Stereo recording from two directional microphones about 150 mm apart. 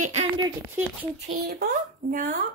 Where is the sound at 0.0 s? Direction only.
50° right (ahead or behind).